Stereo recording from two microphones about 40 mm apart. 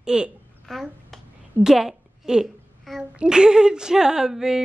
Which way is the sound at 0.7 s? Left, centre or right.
Centre.